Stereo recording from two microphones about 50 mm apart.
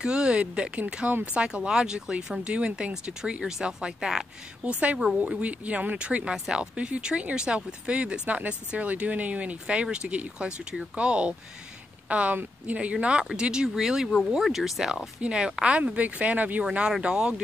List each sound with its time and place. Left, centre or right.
0.0 s speech: centre
4.9 s speech: centre
5.4 s speech: right
12.9 s speech: centre
15.1 s speech: centre
17.0 s speech: centre